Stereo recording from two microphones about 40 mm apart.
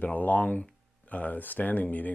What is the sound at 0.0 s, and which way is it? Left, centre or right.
Speech, left.